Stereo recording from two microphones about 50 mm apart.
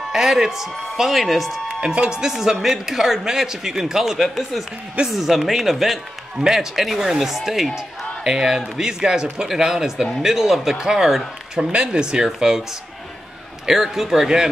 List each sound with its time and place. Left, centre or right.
0.1 s a man's voice: centre
1.7 s a man's voice: centre
13.7 s speech: centre